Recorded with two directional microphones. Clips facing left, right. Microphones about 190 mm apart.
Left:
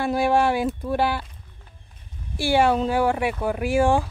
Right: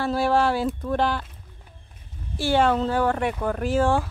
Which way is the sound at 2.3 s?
10° left (ahead or behind).